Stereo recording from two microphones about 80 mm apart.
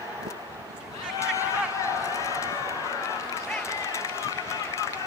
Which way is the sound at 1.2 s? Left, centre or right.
Left.